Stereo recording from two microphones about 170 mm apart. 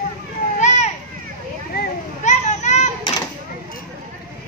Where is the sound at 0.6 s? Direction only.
40° left (ahead or behind).